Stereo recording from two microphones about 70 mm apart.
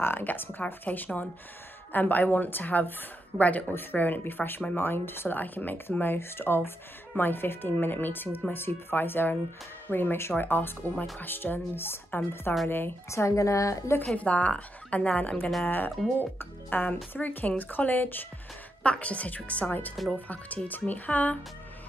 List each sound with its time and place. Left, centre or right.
0.0 s speech: left
13.1 s a woman's voice: left
14.1 s speech: centre